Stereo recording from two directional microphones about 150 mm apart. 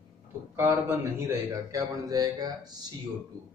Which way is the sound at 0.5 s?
15° right (ahead or behind).